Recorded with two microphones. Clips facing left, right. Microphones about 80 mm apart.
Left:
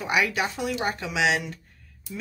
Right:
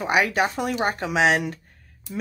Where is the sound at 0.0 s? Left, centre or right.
Right.